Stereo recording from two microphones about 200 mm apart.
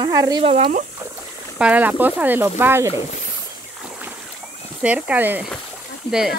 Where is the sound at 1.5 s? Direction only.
5° right (ahead or behind).